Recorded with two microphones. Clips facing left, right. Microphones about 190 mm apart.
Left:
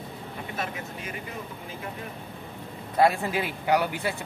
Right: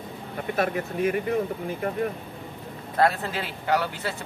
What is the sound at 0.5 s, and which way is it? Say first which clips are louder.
Speech: right 10 dB; 55° right (ahead or behind).